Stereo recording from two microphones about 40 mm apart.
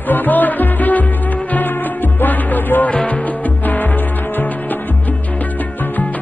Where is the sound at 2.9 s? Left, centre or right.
Left.